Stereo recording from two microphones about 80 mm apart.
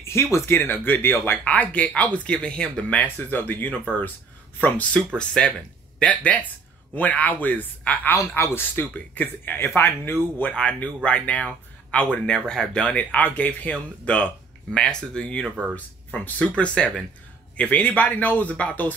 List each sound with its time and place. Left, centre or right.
0.0 s speech: left
0.6 s speech: left
1.4 s speech: centre
10.5 s speech: centre